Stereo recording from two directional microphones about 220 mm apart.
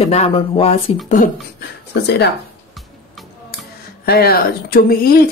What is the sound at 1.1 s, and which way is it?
Speech, 40° left (ahead or behind).